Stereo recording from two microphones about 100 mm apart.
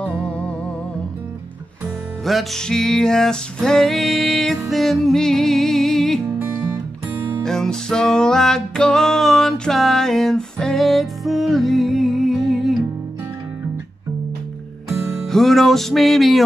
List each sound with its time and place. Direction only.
0.2 s music: 10° left (ahead or behind)
2.2 s music: centre (ahead or behind)
7.2 s music: 25° right (ahead or behind)
7.4 s music: 5° left (ahead or behind)
14.9 s music: 5° left (ahead or behind)